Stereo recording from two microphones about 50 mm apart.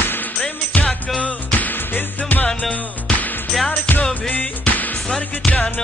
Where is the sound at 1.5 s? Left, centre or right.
Left.